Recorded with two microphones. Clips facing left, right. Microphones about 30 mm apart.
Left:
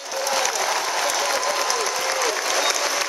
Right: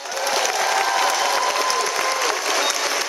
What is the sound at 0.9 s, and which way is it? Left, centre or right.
Crowd, right.